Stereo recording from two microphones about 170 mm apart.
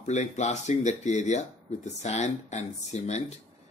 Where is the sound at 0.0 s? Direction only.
45° left (ahead or behind).